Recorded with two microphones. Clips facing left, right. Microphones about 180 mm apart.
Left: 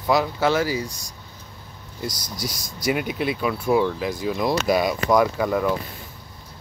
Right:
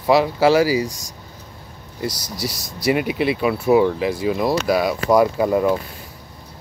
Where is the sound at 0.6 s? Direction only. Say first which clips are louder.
Right 6 dB; 90° right.